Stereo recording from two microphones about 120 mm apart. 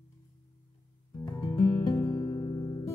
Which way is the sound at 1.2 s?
25° left (ahead or behind).